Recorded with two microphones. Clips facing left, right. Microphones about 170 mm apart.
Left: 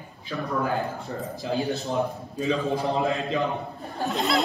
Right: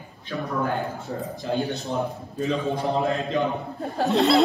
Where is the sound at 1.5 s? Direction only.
Centre (ahead or behind).